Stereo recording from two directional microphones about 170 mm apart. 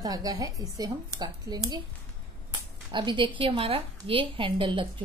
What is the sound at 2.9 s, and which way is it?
A woman's voice, 30° right (ahead or behind).